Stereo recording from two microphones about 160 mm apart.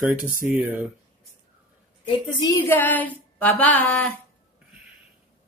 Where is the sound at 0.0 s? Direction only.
10° right (ahead or behind).